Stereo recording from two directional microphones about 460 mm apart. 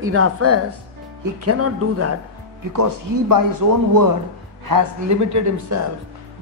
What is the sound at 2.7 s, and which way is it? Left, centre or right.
Speech, right.